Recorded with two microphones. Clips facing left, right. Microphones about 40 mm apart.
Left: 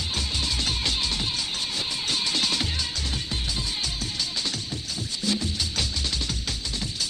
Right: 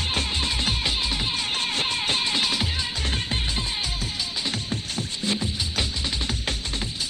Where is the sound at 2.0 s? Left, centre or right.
Right.